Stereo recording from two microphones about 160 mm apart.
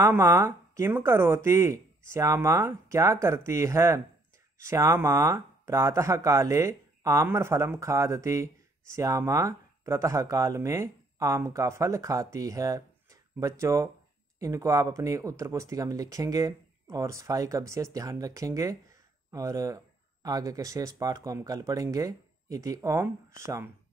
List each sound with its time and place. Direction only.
0.0 s speech: 15° right (ahead or behind)